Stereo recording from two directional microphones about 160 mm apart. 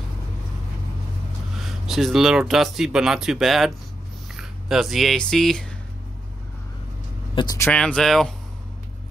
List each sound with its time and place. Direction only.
1.6 s speech: centre (ahead or behind)
7.3 s speech: 20° left (ahead or behind)
7.7 s speech: 5° left (ahead or behind)